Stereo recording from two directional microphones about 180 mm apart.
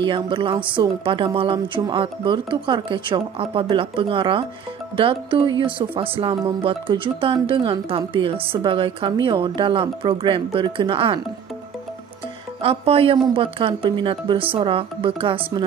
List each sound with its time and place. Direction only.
0.0 s a woman's voice: 25° right (ahead or behind)
12.6 s a woman's voice: 30° right (ahead or behind)